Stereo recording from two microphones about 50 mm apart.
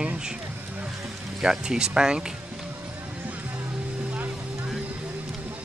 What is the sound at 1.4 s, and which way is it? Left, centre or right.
Speech, centre.